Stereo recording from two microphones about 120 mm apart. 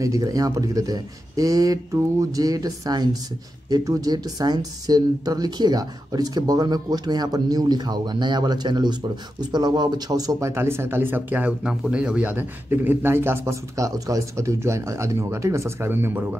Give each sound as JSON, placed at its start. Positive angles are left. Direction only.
{"t": 0.0, "sound": "speech", "side_deg": -30}